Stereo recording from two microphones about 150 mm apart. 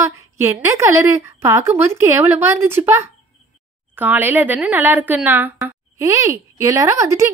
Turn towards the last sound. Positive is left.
turn(degrees=-20)  # may be behind; listen again after turning